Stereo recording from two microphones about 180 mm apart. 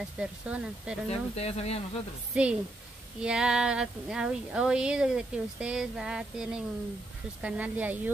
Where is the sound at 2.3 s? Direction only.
5° right (ahead or behind).